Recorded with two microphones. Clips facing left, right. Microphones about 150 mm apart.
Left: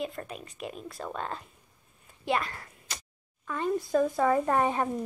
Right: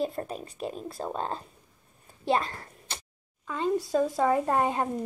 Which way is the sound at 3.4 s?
20° right (ahead or behind).